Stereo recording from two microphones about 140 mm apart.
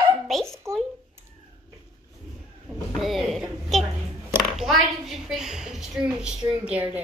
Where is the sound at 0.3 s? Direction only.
Centre (ahead or behind).